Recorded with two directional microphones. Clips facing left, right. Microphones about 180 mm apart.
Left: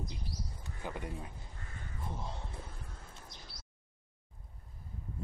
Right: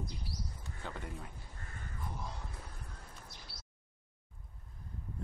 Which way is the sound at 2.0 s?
25° left (ahead or behind).